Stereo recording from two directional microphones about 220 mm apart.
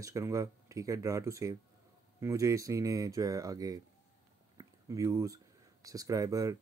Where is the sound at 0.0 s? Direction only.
15° right (ahead or behind).